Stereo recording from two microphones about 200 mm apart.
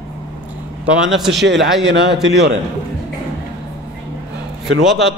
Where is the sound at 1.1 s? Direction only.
Centre (ahead or behind).